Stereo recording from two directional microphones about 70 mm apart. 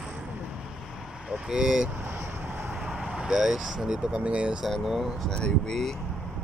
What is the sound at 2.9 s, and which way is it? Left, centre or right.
Speech, centre.